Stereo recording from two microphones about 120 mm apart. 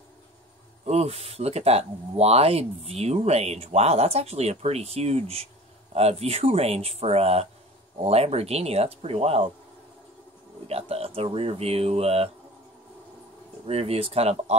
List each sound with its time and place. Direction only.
0.8 s speech: 60° right (ahead or behind)
10.7 s speech: 55° right (ahead or behind)
13.7 s speech: 55° right (ahead or behind)